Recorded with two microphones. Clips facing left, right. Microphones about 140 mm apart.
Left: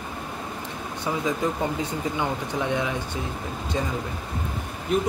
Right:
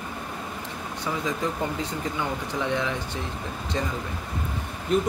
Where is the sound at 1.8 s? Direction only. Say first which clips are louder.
Left 2 dB; 15° left (ahead or behind).